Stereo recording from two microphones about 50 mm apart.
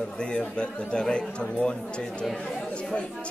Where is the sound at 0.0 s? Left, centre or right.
Centre.